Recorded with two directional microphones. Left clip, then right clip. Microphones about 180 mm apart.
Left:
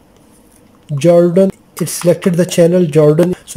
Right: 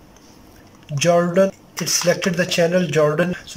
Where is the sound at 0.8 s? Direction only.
25° left (ahead or behind).